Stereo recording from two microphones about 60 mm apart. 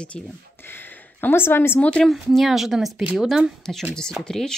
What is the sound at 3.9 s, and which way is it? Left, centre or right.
Speech, centre.